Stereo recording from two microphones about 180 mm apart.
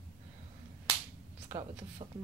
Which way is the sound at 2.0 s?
25° right (ahead or behind).